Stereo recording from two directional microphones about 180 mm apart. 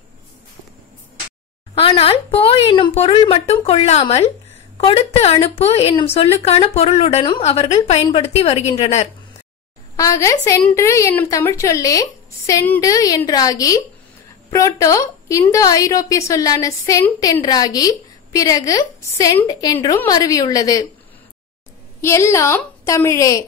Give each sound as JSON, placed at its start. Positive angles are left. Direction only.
{"t": 1.8, "sound": "a woman's voice", "side_deg": 30}
{"t": 9.9, "sound": "a woman's voice", "side_deg": 20}
{"t": 22.0, "sound": "speech", "side_deg": 15}